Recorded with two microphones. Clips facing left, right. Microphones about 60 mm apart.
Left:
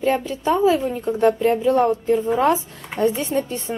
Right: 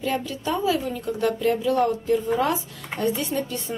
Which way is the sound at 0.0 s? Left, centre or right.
Left.